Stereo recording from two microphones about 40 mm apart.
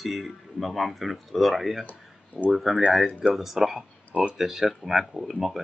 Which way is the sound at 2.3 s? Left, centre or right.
Left.